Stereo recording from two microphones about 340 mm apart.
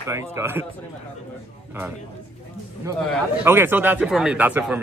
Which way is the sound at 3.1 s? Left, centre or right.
Centre.